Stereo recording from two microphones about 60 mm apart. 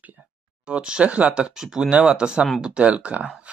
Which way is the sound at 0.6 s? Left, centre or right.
Centre.